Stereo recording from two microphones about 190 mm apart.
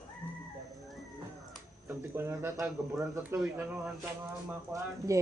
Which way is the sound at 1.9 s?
15° right (ahead or behind).